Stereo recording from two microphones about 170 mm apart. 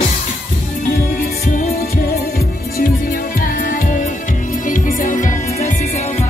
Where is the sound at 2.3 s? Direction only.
60° left (ahead or behind).